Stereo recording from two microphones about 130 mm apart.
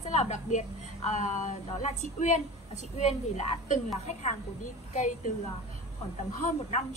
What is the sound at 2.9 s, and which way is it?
Speech, 60° left (ahead or behind).